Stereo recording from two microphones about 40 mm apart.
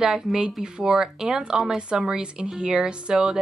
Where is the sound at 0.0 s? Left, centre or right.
Centre.